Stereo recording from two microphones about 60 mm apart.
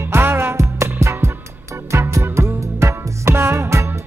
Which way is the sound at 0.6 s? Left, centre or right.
Right.